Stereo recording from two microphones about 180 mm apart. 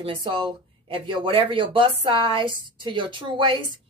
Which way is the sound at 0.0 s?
30° right (ahead or behind).